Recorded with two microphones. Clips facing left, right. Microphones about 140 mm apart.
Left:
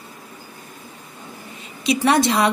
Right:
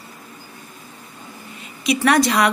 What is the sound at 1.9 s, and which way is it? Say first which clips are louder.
Speech: right 1 dB; 25° left (ahead or behind).